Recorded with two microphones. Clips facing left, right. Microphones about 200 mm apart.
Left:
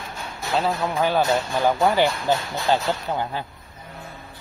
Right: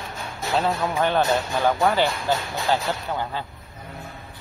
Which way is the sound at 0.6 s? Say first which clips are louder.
Even; centre (ahead or behind).